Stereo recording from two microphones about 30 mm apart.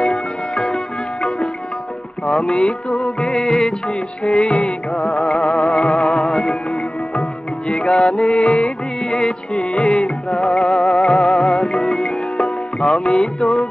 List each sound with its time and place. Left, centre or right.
2.4 s music of bollywood: left
3.2 s music of bollywood: centre; by 4.7 s left
4.9 s music of bollywood: left
7.6 s music: left
8.4 s music of bollywood: left
9.0 s music: left
9.6 s music of bollywood: left
10.3 s music: centre
10.6 s music of bollywood: left
11.6 s music: left